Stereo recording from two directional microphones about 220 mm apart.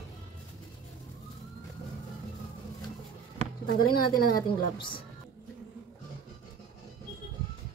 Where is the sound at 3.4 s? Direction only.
30° right (ahead or behind).